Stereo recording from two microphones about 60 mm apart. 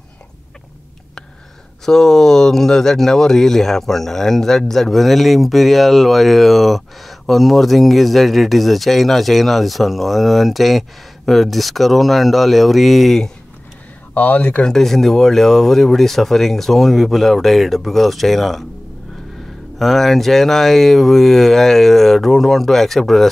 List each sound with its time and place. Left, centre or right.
1.9 s speech: centre
14.1 s speech: left
14.7 s speech: centre
19.8 s speech: centre